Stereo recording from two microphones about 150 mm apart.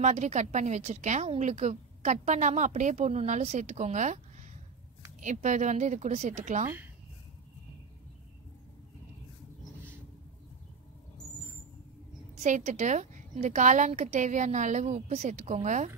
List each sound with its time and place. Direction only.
0.0 s a woman's voice: 50° right (ahead or behind)
5.2 s a woman's voice: 55° right (ahead or behind)
12.4 s a woman's voice: 55° right (ahead or behind)